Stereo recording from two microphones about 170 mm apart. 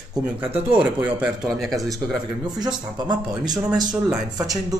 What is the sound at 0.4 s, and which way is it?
Speech, 30° right (ahead or behind).